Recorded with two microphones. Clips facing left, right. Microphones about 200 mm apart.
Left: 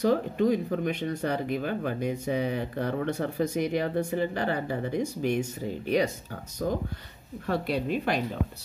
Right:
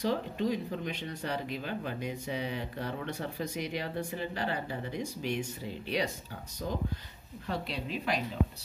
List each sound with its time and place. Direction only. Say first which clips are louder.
0.0 s a woman's voice: left 7 dB; 50° left (ahead or behind)